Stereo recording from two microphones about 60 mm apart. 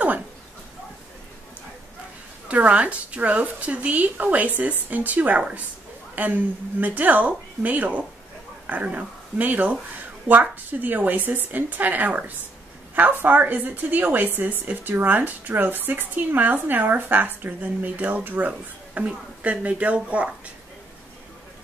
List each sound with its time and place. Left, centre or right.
2.4 s a woman's voice: right